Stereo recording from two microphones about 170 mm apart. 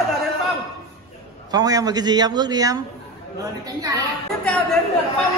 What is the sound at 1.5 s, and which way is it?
A man's voice, 20° right (ahead or behind).